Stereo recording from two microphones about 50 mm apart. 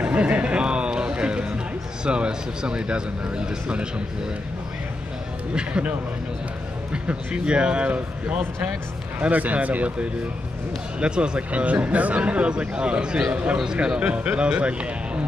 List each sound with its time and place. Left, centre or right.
0.0 s music: right
2.0 s speech: centre
5.5 s speech: right